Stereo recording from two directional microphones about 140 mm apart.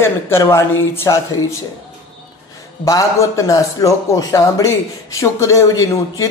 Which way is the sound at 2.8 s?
20° left (ahead or behind).